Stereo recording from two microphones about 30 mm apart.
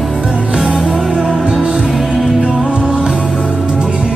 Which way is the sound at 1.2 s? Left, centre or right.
Right.